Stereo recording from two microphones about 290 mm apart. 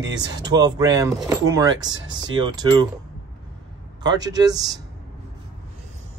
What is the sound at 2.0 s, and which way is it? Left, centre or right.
Speech, right.